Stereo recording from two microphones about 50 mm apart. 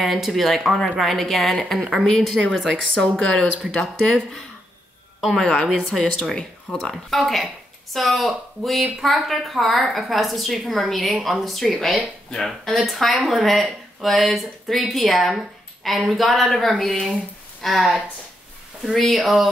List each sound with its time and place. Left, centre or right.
0.0 s speech: centre
3.0 s speech: centre
6.3 s speech: centre
6.9 s speech: centre